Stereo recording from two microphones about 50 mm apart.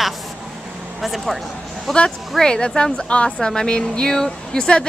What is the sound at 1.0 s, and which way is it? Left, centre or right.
Speech, centre.